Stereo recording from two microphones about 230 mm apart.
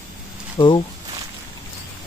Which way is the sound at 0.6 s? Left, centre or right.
Left.